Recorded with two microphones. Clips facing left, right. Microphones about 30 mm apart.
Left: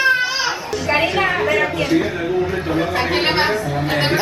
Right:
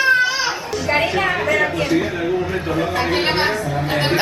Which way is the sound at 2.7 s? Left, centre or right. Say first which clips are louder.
Right 2 dB; centre.